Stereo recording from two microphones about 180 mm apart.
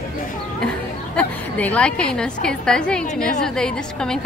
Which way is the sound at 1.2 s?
10° left (ahead or behind).